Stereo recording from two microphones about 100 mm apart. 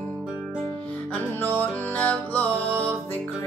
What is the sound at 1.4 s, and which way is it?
Music, 20° left (ahead or behind).